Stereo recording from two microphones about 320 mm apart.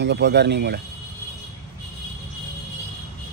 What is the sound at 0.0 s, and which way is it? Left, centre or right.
Speech, right.